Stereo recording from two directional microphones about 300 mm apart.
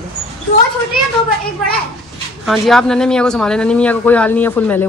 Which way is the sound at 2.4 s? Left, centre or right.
Centre.